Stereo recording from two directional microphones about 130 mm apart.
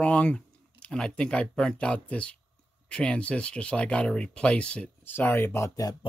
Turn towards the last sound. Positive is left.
turn(degrees=25)  # may be behind; listen again after turning